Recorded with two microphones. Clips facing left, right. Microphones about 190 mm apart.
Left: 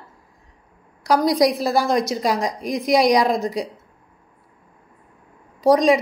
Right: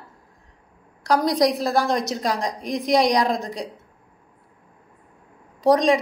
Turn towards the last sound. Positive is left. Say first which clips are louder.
# left 2 dB
turn(degrees=0)  # may be behind; listen again after turning